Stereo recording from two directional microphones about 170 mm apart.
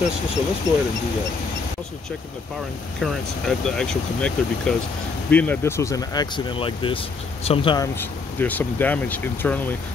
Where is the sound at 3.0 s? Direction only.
5° left (ahead or behind); by 7.9 s 25° left (ahead or behind).